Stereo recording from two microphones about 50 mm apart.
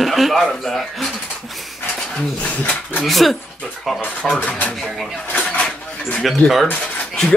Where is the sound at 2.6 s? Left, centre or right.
Left.